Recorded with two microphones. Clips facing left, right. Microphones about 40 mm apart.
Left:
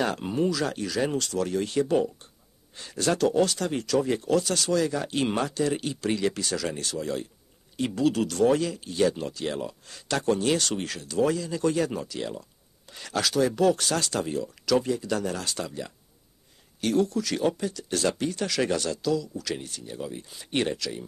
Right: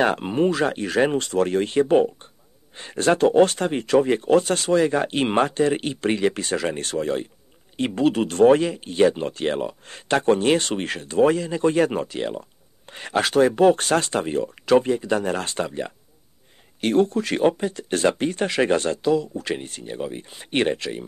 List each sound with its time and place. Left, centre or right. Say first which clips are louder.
0.0 s speech: right 6 dB; right